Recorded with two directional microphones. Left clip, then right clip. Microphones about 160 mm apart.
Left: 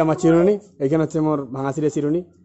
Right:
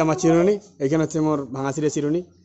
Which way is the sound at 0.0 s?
15° left (ahead or behind).